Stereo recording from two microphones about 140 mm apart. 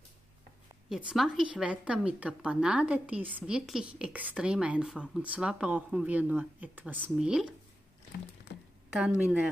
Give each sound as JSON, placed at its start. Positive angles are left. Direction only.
{"t": 0.8, "sound": "a woman's voice", "side_deg": 0}
{"t": 8.9, "sound": "a woman's voice", "side_deg": -5}